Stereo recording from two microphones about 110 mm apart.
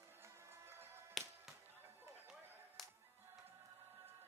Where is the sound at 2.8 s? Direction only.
Centre (ahead or behind).